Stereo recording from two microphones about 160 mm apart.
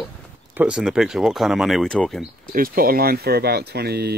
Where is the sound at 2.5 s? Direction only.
65° right (ahead or behind); by 4.1 s 85° right.